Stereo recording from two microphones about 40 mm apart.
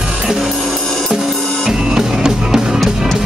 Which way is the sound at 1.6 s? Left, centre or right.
Centre.